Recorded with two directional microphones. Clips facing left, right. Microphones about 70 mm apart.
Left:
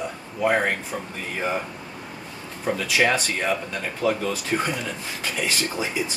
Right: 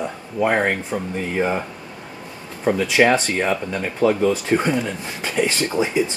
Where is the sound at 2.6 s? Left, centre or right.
Right.